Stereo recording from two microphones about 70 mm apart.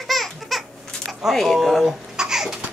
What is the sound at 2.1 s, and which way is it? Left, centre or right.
Babbling, centre.